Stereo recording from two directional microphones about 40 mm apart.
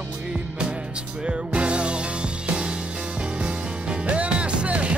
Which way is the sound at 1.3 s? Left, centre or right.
Right.